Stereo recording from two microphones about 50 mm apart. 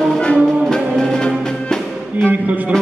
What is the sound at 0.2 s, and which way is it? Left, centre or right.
Music, centre.